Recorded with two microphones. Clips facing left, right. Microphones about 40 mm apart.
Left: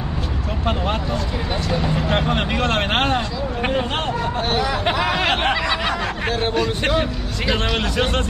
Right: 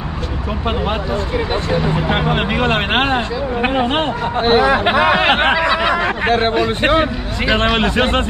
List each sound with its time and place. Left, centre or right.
1.7 s speech: centre
6.5 s speech: right
7.5 s a man's voice: right